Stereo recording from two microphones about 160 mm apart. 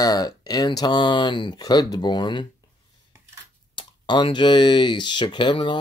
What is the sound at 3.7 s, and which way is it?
Speech, 30° left (ahead or behind).